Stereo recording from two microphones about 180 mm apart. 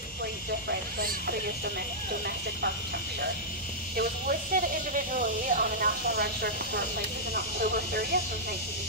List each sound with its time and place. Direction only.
0.7 s speech: 60° right (ahead or behind)
3.9 s speech: 55° right (ahead or behind)